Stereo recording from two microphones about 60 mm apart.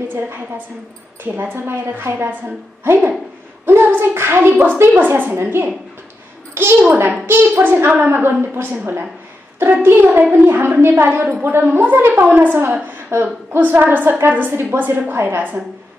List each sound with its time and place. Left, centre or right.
1.2 s a woman's voice: right
6.5 s a sound: right
7.2 s a woman's voice: right